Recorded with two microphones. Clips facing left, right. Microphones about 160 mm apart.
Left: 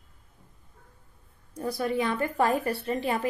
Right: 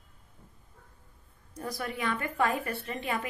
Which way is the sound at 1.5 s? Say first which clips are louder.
Left 8 dB; 30° left (ahead or behind).